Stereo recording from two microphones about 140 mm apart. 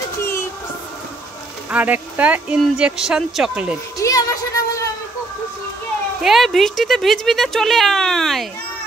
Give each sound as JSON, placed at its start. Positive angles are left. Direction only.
{"t": 1.7, "sound": "speech", "side_deg": -10}
{"t": 4.0, "sound": "speech", "side_deg": 25}
{"t": 6.2, "sound": "speech", "side_deg": 0}